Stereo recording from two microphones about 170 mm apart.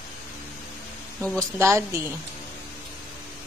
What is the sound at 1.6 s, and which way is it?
Speech, 15° right (ahead or behind).